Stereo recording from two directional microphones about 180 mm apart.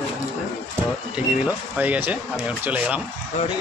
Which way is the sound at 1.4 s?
10° right (ahead or behind).